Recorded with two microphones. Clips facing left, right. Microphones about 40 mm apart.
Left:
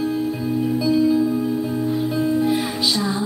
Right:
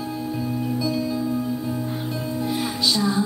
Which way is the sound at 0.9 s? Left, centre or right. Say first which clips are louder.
Left 10 dB; left.